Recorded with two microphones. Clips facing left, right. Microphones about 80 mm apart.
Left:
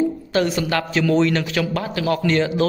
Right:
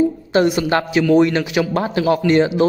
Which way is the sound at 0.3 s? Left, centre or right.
Right.